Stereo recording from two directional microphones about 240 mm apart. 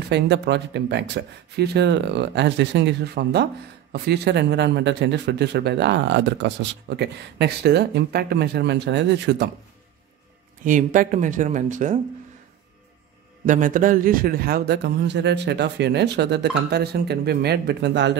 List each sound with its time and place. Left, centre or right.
0.1 s speech: right
10.6 s speech: right
13.5 s speech: right